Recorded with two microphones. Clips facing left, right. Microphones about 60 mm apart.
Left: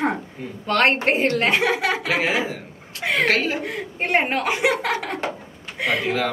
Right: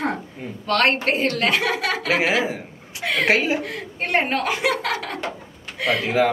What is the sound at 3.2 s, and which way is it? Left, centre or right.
Speech, centre.